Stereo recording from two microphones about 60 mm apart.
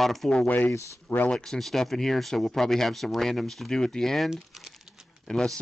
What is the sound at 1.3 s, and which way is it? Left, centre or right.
Speech, centre.